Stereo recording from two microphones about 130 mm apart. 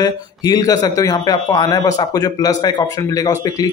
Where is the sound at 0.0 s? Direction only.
30° left (ahead or behind).